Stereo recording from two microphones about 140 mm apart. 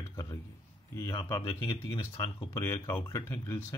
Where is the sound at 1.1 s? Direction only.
25° left (ahead or behind).